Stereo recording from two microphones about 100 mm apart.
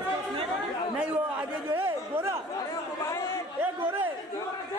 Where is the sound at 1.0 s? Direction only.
15° right (ahead or behind).